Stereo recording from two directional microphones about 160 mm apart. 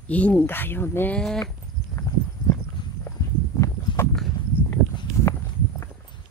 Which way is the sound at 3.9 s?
30° left (ahead or behind).